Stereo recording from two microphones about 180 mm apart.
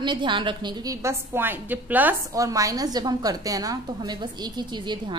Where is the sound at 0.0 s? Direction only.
25° right (ahead or behind).